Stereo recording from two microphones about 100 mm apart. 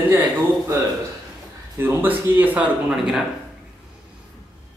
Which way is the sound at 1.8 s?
20° right (ahead or behind).